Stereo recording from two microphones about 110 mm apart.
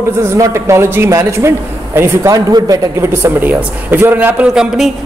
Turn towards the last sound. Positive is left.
turn(degrees=-5)  # may be behind; listen again after turning